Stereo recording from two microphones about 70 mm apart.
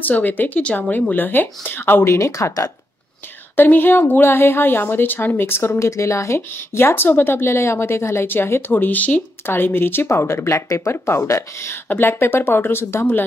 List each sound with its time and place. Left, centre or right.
0.0 s speech: left
2.0 s speech: left
3.5 s a woman's voice: left